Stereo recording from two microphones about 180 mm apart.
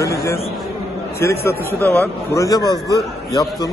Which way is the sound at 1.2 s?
15° left (ahead or behind).